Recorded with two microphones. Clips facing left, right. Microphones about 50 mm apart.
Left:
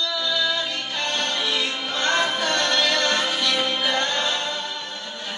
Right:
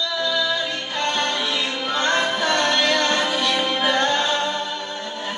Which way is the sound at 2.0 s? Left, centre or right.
Right.